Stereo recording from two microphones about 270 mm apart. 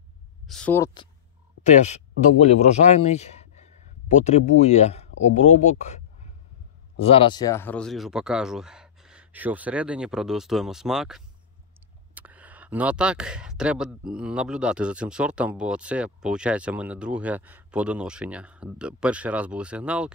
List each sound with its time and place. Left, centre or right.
0.5 s speech: centre
1.6 s speech: left; by 20.1 s centre